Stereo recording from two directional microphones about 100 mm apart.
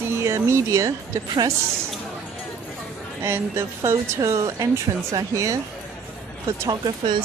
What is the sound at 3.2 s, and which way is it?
Speech, 25° right (ahead or behind).